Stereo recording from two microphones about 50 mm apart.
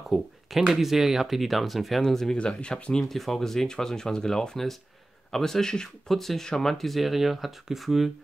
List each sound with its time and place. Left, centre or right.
0.1 s speech: centre
2.3 s speech: left
3.0 s speech: centre